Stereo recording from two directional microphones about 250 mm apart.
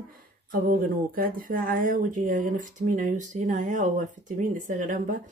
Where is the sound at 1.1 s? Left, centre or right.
Right.